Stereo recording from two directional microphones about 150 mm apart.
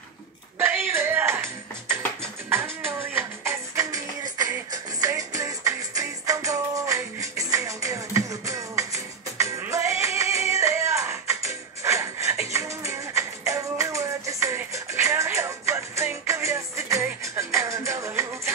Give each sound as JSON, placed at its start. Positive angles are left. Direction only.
{"t": 0.6, "sound": "music", "side_deg": -15}
{"t": 2.5, "sound": "music", "side_deg": -15}